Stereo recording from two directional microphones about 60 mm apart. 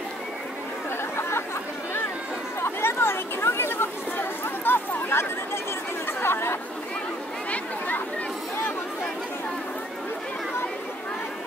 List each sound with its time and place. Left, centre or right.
2.6 s chatter: left